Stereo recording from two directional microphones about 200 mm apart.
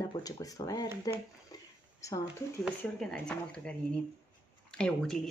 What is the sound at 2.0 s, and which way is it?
Speech, 15° left (ahead or behind).